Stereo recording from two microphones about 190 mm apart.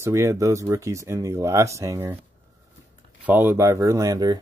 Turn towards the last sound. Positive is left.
turn(degrees=-20)  # may be behind; listen again after turning